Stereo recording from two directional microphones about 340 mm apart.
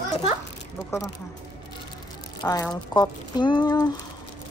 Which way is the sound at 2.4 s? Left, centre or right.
Centre.